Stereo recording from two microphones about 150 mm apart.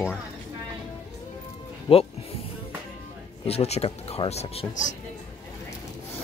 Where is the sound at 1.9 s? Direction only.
35° left (ahead or behind).